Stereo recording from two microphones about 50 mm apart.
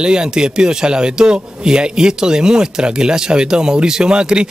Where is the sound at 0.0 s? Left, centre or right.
Centre.